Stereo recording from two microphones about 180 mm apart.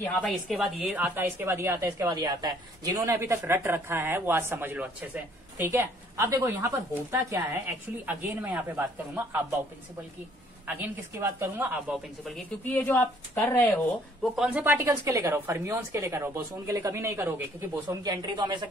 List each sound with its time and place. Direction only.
0.0 s a woman's voice: 5° left (ahead or behind)
10.7 s a woman's voice: 10° right (ahead or behind)
12.3 s speech: 10° left (ahead or behind)
14.3 s a woman's voice: 5° right (ahead or behind); by 18.7 s 25° right (ahead or behind)